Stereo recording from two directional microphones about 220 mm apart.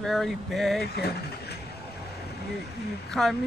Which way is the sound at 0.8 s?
45° left (ahead or behind).